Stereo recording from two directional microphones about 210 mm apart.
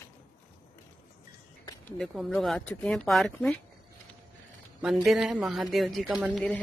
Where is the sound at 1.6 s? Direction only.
15° left (ahead or behind).